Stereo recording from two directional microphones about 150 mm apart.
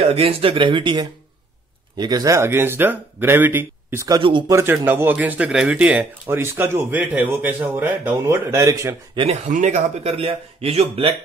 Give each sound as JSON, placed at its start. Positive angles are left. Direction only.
{"t": 0.0, "sound": "a man's voice", "side_deg": -40}
{"t": 4.2, "sound": "speech", "side_deg": -35}
{"t": 4.5, "sound": "a man's voice", "side_deg": -20}
{"t": 9.1, "sound": "speech", "side_deg": -35}
{"t": 9.5, "sound": "speech", "side_deg": -55}